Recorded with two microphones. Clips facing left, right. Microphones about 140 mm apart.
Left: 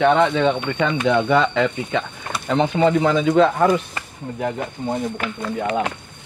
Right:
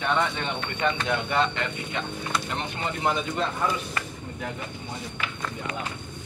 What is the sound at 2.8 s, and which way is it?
Speech, 90° left.